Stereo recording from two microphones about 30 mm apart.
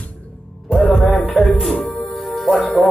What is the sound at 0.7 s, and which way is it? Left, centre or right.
Music, centre.